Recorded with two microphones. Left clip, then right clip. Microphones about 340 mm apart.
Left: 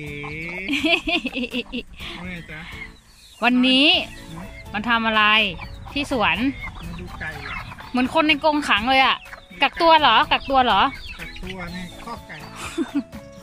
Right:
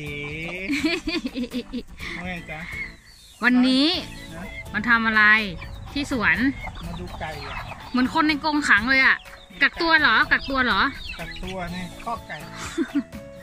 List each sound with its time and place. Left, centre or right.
0.2 s music: right
0.7 s speech: centre
3.3 s speech: centre
7.9 s speech: centre
12.5 s music: centre